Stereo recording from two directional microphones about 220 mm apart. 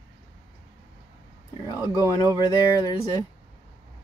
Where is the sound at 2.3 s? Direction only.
20° left (ahead or behind).